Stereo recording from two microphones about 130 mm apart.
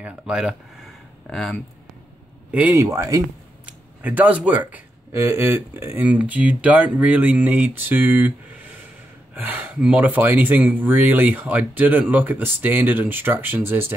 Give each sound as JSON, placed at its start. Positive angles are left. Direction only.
{"t": 0.0, "sound": "speech", "side_deg": -10}
{"t": 1.3, "sound": "speech", "side_deg": 5}
{"t": 2.5, "sound": "speech", "side_deg": -15}
{"t": 3.6, "sound": "a sound", "side_deg": -15}
{"t": 5.2, "sound": "speech", "side_deg": -20}